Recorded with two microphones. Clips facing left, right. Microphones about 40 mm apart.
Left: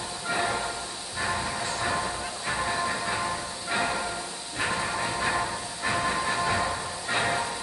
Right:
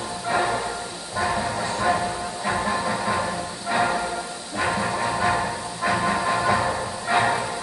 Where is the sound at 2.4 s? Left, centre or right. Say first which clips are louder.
Right 4 dB; right.